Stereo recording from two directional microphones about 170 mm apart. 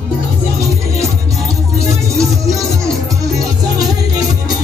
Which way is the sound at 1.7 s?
20° right (ahead or behind).